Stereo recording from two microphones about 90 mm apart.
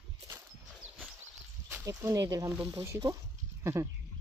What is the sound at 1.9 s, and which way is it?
Speech, 35° right (ahead or behind).